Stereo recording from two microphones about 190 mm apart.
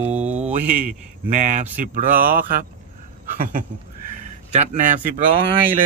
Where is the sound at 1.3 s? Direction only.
40° right (ahead or behind).